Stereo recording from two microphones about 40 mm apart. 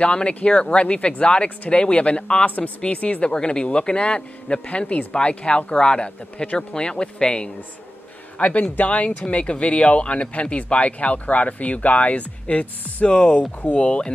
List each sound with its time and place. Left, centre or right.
0.0 s speech: left
2.4 s speech: left
3.3 s speech: left
6.7 s speech: left
8.4 s speech: left